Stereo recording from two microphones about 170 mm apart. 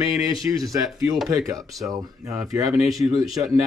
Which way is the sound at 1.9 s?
20° right (ahead or behind).